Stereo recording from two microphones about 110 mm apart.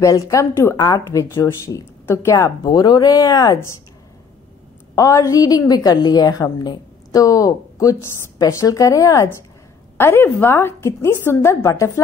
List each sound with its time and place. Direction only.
0.0 s a woman's voice: 30° left (ahead or behind)
2.6 s a woman's voice: 40° left (ahead or behind)
4.9 s a woman's voice: 30° left (ahead or behind)